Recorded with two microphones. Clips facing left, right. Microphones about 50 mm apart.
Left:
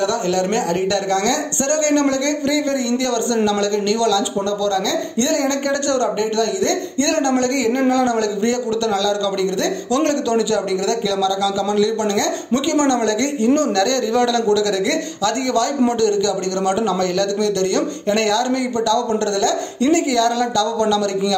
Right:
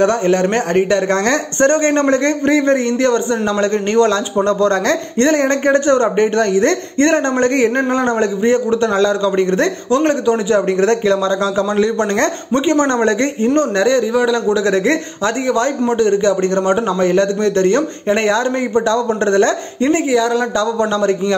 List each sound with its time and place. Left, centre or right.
0.0 s a man's voice: right
1.7 s a man's voice: right
9.9 s speech: right
10.7 s a man's voice: right; by 20.4 s centre
20.5 s speech: right